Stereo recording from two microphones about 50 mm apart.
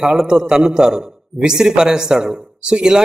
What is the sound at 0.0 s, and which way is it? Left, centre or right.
A man's voice, centre.